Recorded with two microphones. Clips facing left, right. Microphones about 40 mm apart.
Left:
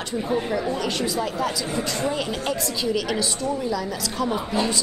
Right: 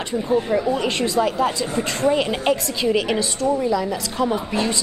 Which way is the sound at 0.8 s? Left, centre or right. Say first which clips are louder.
Right 5 dB; right.